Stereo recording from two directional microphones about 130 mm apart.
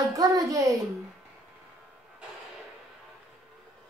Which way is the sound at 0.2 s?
25° right (ahead or behind).